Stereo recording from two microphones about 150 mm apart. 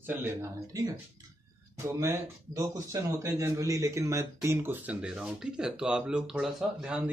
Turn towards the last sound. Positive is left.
turn(degrees=-5)  # may be behind; listen again after turning